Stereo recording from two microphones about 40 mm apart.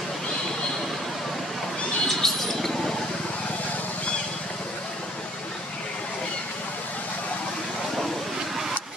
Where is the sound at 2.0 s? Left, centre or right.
Centre.